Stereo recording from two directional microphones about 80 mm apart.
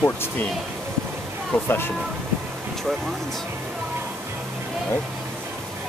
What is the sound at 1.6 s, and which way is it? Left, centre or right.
Speech, left.